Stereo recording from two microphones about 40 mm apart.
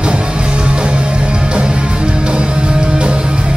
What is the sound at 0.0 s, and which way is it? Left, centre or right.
Music, right.